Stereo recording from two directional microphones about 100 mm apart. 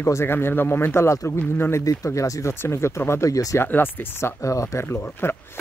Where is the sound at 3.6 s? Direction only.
20° left (ahead or behind).